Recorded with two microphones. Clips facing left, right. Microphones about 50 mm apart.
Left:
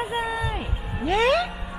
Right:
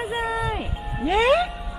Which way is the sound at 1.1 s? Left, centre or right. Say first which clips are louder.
Right 2 dB; centre.